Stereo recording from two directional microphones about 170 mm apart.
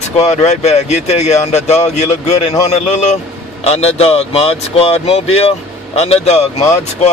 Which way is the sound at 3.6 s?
35° left (ahead or behind).